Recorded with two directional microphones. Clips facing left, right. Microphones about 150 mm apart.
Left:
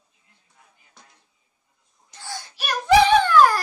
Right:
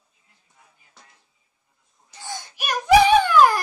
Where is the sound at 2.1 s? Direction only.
20° right (ahead or behind).